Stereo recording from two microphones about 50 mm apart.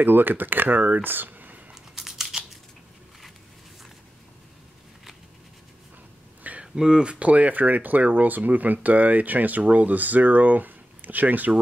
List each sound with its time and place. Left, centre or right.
0.0 s speech: right
1.7 s a sound: centre
6.6 s speech: centre; by 11.5 s right